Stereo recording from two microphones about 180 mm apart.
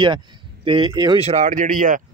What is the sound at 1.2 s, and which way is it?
Speech, 40° right (ahead or behind).